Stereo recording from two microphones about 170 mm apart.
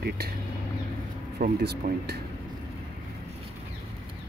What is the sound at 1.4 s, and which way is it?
Speech, 70° right (ahead or behind).